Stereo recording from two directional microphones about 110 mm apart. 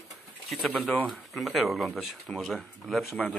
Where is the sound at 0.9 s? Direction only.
15° left (ahead or behind).